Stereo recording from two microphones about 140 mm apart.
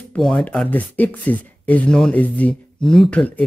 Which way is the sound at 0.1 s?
5° left (ahead or behind).